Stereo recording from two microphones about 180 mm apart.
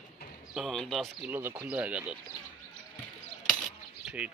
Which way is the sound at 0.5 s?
Centre (ahead or behind).